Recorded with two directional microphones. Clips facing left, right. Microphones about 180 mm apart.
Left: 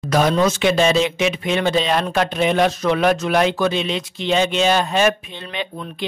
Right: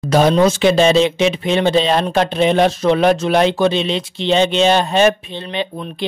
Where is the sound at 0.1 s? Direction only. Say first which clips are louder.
Right 4 dB; 30° right (ahead or behind).